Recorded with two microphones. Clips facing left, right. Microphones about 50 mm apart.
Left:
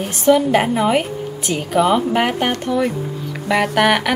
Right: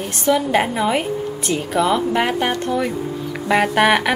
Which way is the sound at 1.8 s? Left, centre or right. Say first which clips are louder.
Left 3 dB; centre.